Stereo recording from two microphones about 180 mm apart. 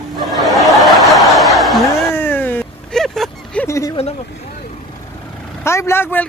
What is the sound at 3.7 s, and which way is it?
Speech, 15° left (ahead or behind).